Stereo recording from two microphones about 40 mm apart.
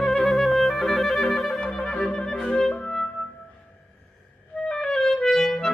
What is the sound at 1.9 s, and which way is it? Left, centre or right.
Clarinet, centre.